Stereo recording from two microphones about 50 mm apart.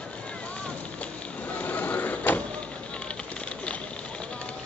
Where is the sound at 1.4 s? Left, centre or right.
Left.